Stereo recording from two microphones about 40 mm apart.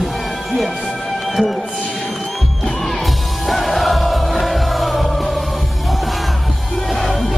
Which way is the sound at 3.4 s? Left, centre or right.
Centre.